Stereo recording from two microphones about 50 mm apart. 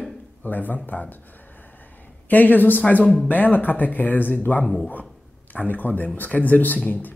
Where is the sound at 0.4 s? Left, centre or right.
Left.